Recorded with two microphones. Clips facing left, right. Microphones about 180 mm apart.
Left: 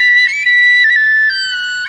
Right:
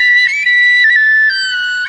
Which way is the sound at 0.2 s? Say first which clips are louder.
Even; 60° right (ahead or behind).